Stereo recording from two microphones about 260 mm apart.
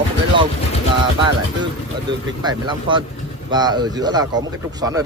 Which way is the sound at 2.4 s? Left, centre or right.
Centre.